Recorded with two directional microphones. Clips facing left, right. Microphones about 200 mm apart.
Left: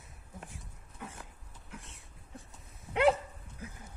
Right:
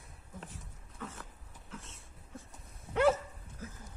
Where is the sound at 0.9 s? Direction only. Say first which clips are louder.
Right 1 dB; 15° left (ahead or behind).